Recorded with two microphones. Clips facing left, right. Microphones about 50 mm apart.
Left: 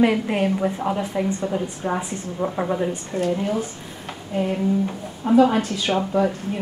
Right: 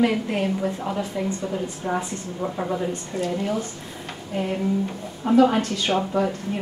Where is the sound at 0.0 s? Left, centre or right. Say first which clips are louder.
Left 3 dB; centre.